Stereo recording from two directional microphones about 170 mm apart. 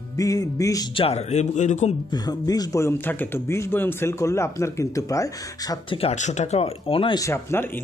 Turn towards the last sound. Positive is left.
turn(degrees=15)  # may be behind; listen again after turning